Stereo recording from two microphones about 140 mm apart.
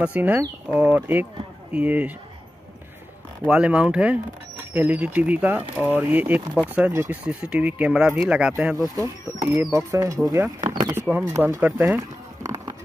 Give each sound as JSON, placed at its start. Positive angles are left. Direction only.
{"t": 0.0, "sound": "speech", "side_deg": -10}
{"t": 3.4, "sound": "speech", "side_deg": -10}
{"t": 9.5, "sound": "speech", "side_deg": -20}
{"t": 10.6, "sound": "a sound", "side_deg": -35}
{"t": 10.9, "sound": "speech", "side_deg": -15}
{"t": 12.4, "sound": "music", "side_deg": -25}